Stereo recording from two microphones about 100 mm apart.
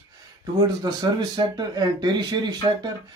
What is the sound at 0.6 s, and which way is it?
Speech, 45° right (ahead or behind).